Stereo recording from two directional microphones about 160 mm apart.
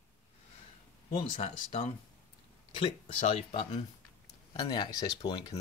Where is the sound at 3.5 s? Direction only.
30° left (ahead or behind).